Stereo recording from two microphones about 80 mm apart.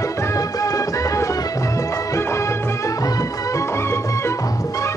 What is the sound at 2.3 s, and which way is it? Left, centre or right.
Music, left.